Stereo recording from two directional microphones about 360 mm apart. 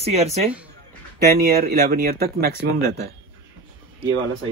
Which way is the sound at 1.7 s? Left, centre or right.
Right.